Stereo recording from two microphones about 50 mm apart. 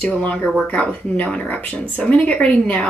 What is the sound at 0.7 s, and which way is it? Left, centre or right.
A woman's voice, left.